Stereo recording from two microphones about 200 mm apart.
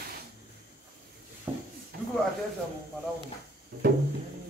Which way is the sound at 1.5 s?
15° right (ahead or behind).